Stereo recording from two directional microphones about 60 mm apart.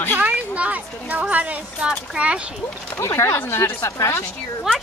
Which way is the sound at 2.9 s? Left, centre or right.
Left.